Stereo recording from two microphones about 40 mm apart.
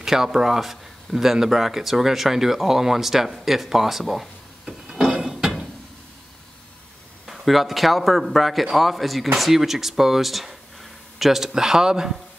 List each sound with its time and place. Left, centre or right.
0.0 s speech: centre
4.8 s a sound: centre
7.2 s a man's voice: centre